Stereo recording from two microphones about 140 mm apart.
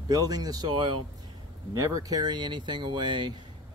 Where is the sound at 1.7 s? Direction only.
25° right (ahead or behind).